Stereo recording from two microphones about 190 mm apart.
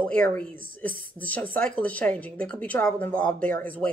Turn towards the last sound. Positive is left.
turn(degrees=10)  # may be behind; listen again after turning